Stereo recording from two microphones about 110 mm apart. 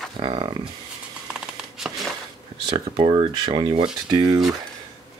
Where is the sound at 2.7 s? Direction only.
60° right (ahead or behind).